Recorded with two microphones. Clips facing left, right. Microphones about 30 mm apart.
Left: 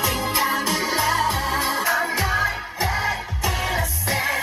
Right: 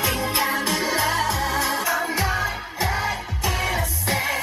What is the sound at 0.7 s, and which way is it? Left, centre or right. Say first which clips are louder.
Music: left 1 dB; left.